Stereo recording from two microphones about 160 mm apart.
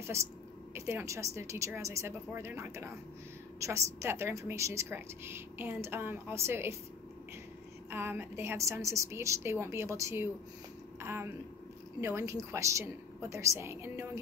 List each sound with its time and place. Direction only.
0.7 s a woman's voice: 15° right (ahead or behind)
7.9 s a woman's voice: 15° right (ahead or behind)